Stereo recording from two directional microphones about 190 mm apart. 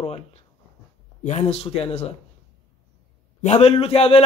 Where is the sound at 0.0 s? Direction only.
30° left (ahead or behind).